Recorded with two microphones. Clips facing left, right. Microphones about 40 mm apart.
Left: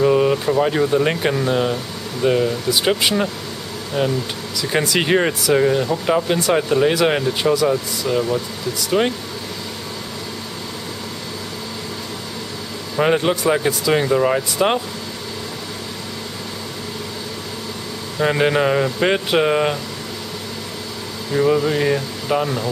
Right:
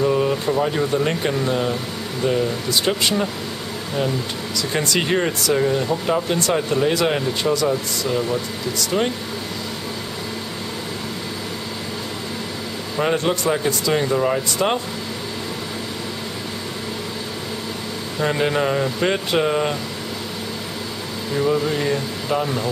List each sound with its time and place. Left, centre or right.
0.0 s a sound: centre
0.5 s speech: centre
4.8 s speech: centre
12.9 s a man's voice: centre
18.2 s speech: centre
21.3 s speech: centre